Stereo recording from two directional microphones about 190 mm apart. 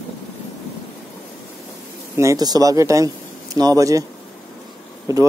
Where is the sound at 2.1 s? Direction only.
15° right (ahead or behind).